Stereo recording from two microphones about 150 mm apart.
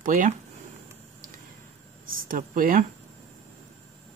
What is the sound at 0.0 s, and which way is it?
Speech, 65° right (ahead or behind).